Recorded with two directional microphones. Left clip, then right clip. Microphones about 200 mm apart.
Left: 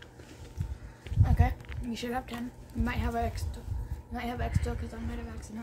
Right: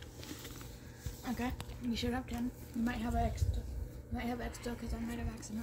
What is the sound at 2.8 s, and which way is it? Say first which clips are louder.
Speech: left 4 dB; 55° left (ahead or behind).